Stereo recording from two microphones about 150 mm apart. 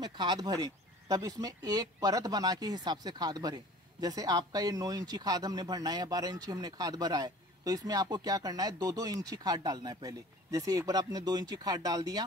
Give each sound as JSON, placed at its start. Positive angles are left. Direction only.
{"t": 0.0, "sound": "speech", "side_deg": -30}